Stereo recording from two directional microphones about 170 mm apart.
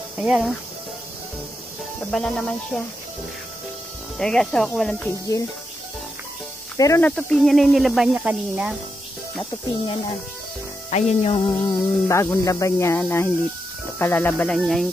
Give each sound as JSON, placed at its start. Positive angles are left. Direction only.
{"t": 0.2, "sound": "speech", "side_deg": -5}
{"t": 2.0, "sound": "speech", "side_deg": 5}
{"t": 4.2, "sound": "speech", "side_deg": 5}
{"t": 6.8, "sound": "speech", "side_deg": 20}
{"t": 7.1, "sound": "speech", "side_deg": 5}
{"t": 10.9, "sound": "speech", "side_deg": 40}
{"t": 11.6, "sound": "speech", "side_deg": 20}